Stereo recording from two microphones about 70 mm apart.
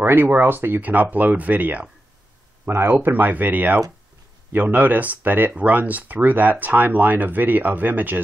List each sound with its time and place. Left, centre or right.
0.0 s speech: right
2.6 s speech: right